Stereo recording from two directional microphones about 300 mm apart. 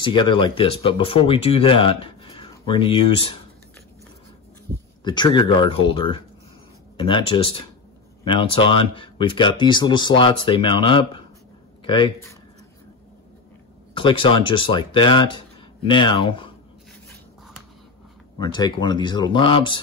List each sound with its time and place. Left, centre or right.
0.0 s speech: centre
5.0 s speech: centre
13.9 s speech: centre
18.4 s speech: centre